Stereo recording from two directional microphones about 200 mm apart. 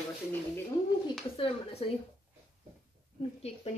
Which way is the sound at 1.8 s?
30° left (ahead or behind).